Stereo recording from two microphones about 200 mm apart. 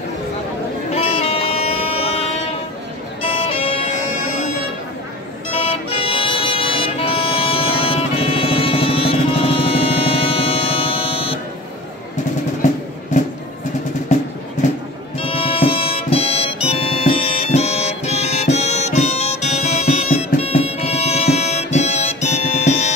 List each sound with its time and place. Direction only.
0.9 s music: 30° left (ahead or behind)
3.2 s music: 30° left (ahead or behind)
5.5 s music: 30° left (ahead or behind)
12.6 s music: 35° left (ahead or behind)
15.1 s music: 25° left (ahead or behind)